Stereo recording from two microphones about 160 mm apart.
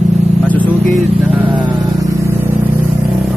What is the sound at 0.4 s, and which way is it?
Vehicle, 10° left (ahead or behind).